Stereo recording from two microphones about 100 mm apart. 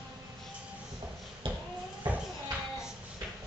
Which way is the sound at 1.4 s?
60° right (ahead or behind).